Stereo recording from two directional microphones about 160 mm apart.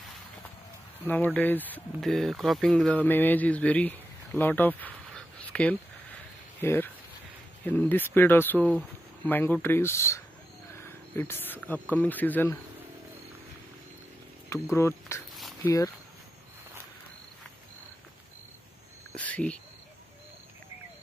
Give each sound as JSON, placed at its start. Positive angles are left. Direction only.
{"t": 1.0, "sound": "speech", "side_deg": 10}
{"t": 14.5, "sound": "speech", "side_deg": 15}
{"t": 19.1, "sound": "speech", "side_deg": 10}